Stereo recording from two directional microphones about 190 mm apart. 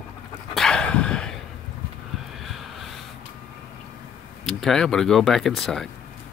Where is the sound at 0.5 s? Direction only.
5° left (ahead or behind).